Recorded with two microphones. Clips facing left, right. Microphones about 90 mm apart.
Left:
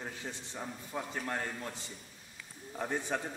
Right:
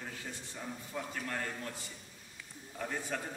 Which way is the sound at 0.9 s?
25° left (ahead or behind).